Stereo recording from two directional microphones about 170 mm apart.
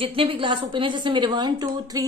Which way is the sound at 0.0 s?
30° right (ahead or behind).